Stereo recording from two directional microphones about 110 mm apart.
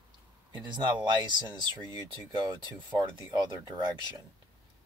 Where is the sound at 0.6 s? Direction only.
45° right (ahead or behind).